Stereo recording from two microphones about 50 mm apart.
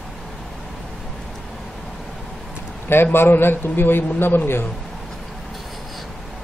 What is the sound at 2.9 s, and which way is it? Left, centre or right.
Speech, left.